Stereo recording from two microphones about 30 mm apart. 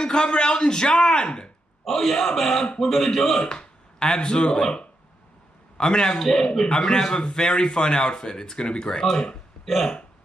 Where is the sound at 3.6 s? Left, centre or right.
Left.